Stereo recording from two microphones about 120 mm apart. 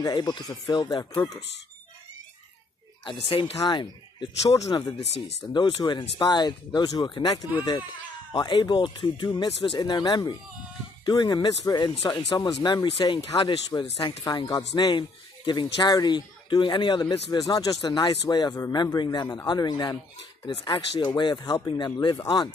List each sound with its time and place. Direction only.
0.0 s speech: 35° left (ahead or behind)
3.0 s speech: 45° left (ahead or behind); by 4.9 s 25° left (ahead or behind)
5.5 s speech: 40° left (ahead or behind)